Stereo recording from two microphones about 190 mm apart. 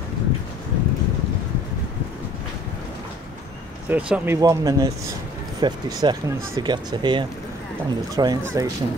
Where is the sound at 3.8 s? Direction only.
5° right (ahead or behind).